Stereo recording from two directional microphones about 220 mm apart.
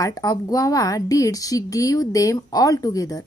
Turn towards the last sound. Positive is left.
turn(degrees=15)  # may be behind; listen again after turning